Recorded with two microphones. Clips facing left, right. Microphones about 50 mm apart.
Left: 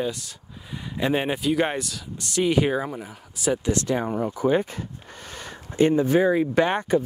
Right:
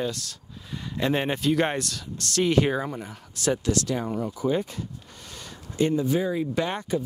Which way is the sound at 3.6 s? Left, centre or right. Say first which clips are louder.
Left 2 dB; left.